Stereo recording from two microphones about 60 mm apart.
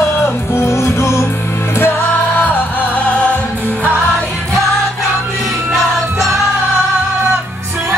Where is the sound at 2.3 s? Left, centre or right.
Left.